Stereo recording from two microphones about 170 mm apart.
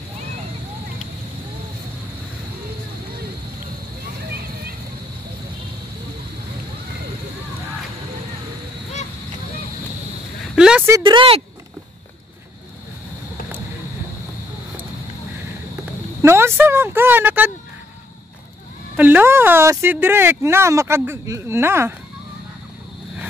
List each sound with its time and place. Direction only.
10.5 s a sound: 5° right (ahead or behind)
11.0 s speech: 30° right (ahead or behind)
16.2 s speech: 15° right (ahead or behind)
18.9 s speech: 10° right (ahead or behind)